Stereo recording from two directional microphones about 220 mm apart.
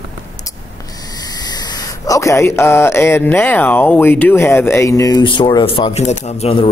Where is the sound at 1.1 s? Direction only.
20° left (ahead or behind).